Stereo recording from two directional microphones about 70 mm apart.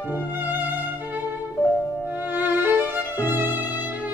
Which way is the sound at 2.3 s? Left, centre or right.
Right.